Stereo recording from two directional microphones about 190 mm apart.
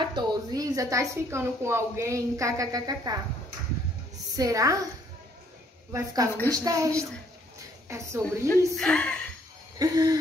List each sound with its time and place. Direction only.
0.0 s a woman's voice: 25° right (ahead or behind)
4.4 s a woman's voice: 15° right (ahead or behind)
5.9 s a woman's voice: 15° right (ahead or behind)
7.9 s a woman's voice: 15° right (ahead or behind)
8.5 s speech: 5° left (ahead or behind)
9.8 s a woman's voice: 20° right (ahead or behind)